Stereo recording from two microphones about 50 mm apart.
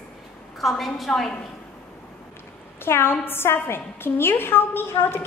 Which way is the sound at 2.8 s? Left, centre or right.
Left.